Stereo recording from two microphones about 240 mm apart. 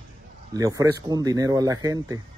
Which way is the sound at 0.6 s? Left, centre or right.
Centre.